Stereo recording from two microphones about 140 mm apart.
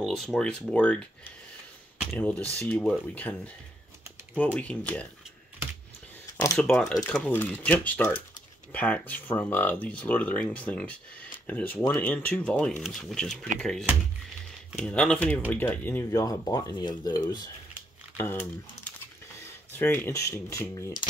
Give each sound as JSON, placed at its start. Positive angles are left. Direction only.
{"t": 0.0, "sound": "speech", "side_deg": 0}
{"t": 4.6, "sound": "speech", "side_deg": 10}
{"t": 6.7, "sound": "speech", "side_deg": 5}
{"t": 14.9, "sound": "speech", "side_deg": 10}
{"t": 16.2, "sound": "speech", "side_deg": 25}
{"t": 18.1, "sound": "speech", "side_deg": 15}
{"t": 19.7, "sound": "speech", "side_deg": 15}